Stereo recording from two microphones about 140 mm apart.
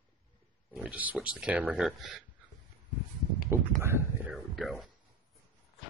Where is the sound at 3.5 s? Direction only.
15° right (ahead or behind).